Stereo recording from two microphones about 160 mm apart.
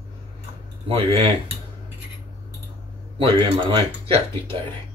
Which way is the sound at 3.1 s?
35° right (ahead or behind).